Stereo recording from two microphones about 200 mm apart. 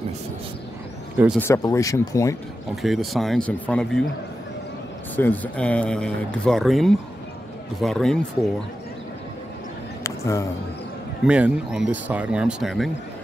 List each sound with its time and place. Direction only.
1.1 s speech: 5° right (ahead or behind)
1.4 s speech: 15° left (ahead or behind)
2.7 s speech: centre (ahead or behind)
5.1 s speech: 10° left (ahead or behind)
10.0 s a sound: 15° left (ahead or behind)
11.2 s speech: 5° right (ahead or behind)